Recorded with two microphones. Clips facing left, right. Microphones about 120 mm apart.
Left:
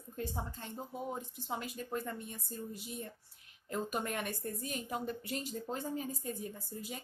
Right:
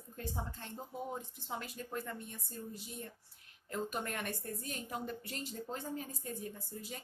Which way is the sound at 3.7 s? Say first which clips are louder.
Left 2 dB; 10° left (ahead or behind).